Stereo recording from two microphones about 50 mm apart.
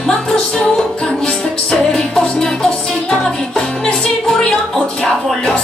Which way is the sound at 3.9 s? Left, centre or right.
Centre.